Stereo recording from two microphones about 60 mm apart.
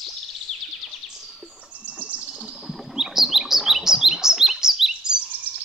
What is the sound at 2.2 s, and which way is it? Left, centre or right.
Chirp, centre.